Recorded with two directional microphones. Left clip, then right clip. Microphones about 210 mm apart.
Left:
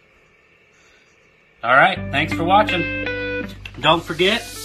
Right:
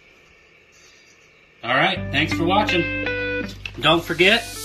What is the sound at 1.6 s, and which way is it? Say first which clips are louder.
Speech: left 5 dB; centre (ahead or behind).